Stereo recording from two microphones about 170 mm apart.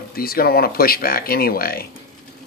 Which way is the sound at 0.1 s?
60° left (ahead or behind).